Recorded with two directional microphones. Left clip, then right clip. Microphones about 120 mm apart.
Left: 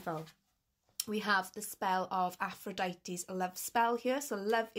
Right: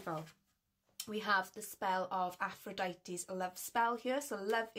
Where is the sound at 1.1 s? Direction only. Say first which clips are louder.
Left 2 dB; 40° left (ahead or behind).